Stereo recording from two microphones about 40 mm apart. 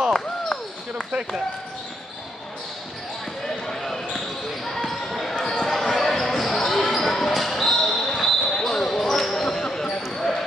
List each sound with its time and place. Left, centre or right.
3.4 s basketball bounce: centre